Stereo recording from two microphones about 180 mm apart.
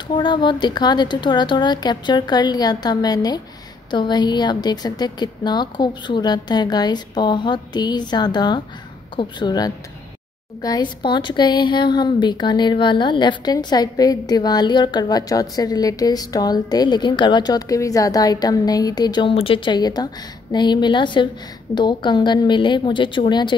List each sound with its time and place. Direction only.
0.1 s a woman's voice: 25° left (ahead or behind)